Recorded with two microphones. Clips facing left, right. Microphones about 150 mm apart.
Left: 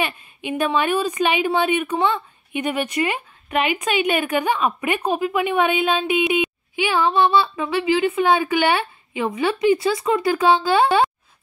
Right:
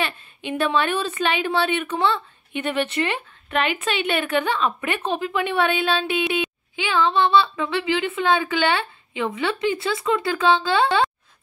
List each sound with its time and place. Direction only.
0.0 s a woman's voice: 10° left (ahead or behind)